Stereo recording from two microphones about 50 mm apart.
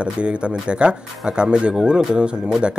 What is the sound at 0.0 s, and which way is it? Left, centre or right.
Speech, right.